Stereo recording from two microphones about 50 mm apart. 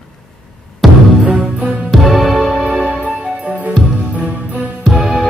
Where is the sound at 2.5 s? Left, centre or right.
Right.